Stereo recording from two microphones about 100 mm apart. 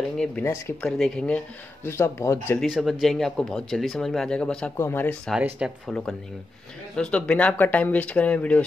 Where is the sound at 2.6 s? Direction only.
Centre (ahead or behind).